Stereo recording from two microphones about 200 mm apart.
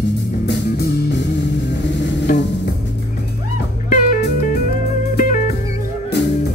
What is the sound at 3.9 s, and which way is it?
Music, 40° left (ahead or behind).